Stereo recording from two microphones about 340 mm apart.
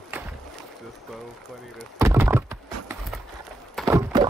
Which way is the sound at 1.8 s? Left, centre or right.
Centre.